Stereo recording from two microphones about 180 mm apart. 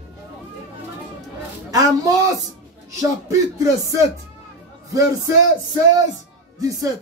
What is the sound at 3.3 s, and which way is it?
Music, 15° right (ahead or behind).